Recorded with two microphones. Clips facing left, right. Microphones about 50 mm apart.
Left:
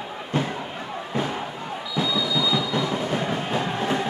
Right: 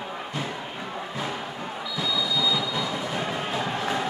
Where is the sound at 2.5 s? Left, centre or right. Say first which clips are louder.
Left 3 dB; left.